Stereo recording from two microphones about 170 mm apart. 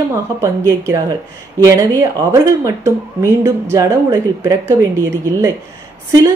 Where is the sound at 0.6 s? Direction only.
20° right (ahead or behind).